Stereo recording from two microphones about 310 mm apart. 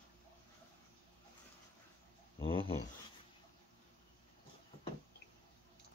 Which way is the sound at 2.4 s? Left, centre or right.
Centre.